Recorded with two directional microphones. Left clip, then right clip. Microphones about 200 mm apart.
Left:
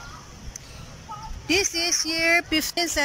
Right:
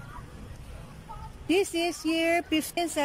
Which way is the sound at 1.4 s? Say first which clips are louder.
Left 3 dB; 15° right (ahead or behind).